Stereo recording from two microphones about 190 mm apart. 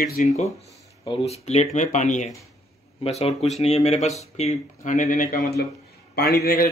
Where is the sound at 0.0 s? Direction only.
40° left (ahead or behind).